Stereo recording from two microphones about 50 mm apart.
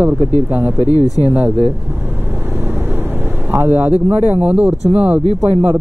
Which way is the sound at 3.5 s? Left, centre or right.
Right.